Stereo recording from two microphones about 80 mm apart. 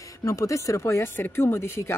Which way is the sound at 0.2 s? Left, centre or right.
Left.